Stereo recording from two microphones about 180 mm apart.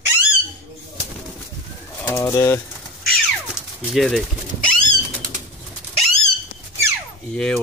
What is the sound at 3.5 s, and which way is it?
Pigeon, centre (ahead or behind).